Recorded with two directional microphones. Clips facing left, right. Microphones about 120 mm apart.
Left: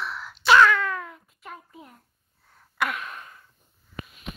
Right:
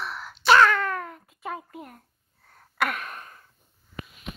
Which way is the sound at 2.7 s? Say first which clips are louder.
Right 1 dB; 45° right (ahead or behind).